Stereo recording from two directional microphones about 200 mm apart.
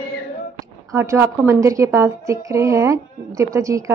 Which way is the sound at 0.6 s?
15° right (ahead or behind).